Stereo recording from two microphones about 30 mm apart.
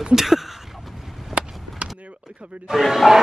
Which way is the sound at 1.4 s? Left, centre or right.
Right.